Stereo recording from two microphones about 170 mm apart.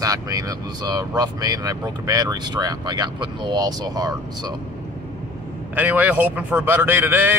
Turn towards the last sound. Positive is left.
turn(degrees=-10)  # may be behind; listen again after turning